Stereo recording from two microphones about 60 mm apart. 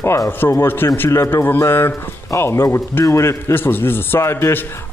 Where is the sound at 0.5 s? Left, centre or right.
Left.